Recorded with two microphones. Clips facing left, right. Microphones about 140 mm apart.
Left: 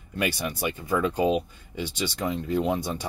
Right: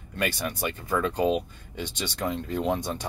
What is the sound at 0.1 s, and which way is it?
Speech, 10° left (ahead or behind).